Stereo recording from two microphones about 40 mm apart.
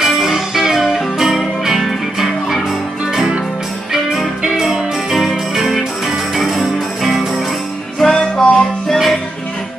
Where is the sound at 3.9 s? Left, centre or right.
Centre.